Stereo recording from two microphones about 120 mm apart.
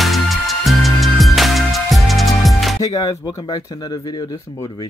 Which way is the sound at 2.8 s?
30° left (ahead or behind).